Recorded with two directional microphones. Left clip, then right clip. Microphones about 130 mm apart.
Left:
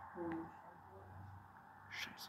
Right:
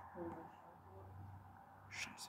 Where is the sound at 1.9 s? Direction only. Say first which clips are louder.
Left 1 dB; 10° right (ahead or behind).